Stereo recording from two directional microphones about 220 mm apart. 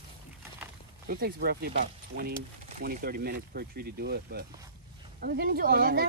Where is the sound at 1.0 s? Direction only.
45° right (ahead or behind).